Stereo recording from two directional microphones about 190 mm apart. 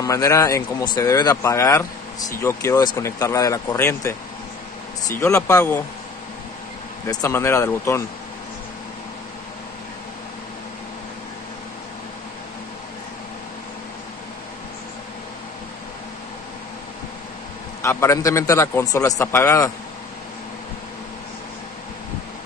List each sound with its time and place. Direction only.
0.0 s speech: 15° left (ahead or behind)
7.1 s speech: 15° left (ahead or behind)
17.8 s speech: 15° left (ahead or behind)